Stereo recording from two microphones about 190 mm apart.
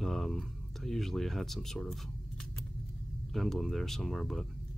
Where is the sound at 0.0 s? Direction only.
Centre (ahead or behind).